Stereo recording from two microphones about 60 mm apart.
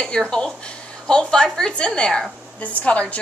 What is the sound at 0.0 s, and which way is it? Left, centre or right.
A woman's voice, centre.